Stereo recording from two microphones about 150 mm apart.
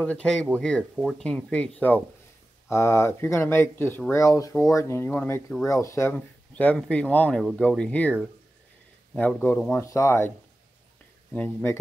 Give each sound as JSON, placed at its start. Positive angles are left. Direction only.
{"t": 0.0, "sound": "speech", "side_deg": 10}
{"t": 5.7, "sound": "speech", "side_deg": 20}
{"t": 11.3, "sound": "speech", "side_deg": 15}